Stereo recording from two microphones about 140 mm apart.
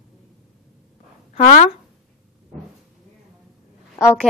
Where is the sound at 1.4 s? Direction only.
65° left (ahead or behind).